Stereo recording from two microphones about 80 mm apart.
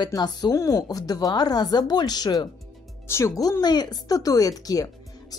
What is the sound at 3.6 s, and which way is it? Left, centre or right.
Speech, left.